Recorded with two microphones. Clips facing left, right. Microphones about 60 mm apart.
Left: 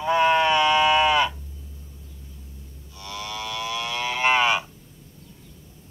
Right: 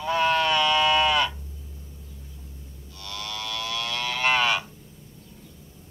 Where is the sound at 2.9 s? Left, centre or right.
Centre.